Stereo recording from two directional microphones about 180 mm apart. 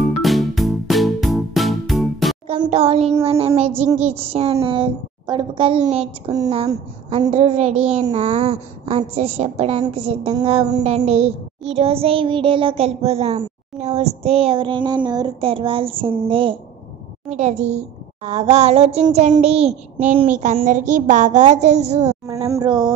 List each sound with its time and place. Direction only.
0.0 s music: centre (ahead or behind)
2.7 s speech: 35° right (ahead or behind)
6.2 s speech: 20° right (ahead or behind)
7.2 s speech: 35° right (ahead or behind)
10.3 s speech: 20° right (ahead or behind)
11.1 s speech: 35° right (ahead or behind)
17.3 s speech: 40° right (ahead or behind)
22.2 s speech: 20° right (ahead or behind)